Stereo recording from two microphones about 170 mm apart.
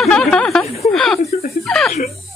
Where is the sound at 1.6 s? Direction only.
Centre (ahead or behind).